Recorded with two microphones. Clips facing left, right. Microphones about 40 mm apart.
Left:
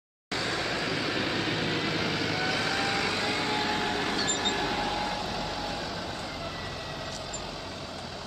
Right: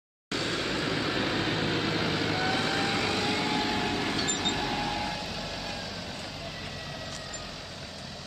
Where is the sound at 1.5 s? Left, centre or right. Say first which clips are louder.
Even; left.